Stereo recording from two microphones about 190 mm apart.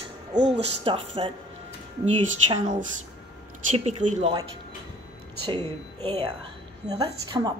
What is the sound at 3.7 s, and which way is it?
Speech, 35° right (ahead or behind).